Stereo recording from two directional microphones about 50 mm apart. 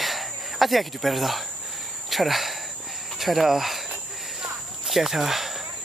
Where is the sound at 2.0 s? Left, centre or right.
Centre.